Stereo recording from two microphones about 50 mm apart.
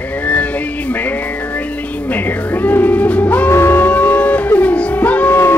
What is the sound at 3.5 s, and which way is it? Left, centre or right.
Music, left.